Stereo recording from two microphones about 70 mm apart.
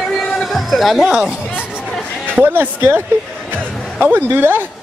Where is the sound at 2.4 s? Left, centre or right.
Right.